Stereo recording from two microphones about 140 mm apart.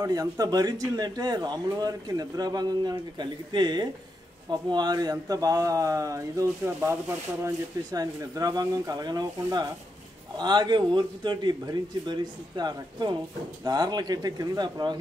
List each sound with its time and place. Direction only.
0.0 s a man's voice: 25° right (ahead or behind)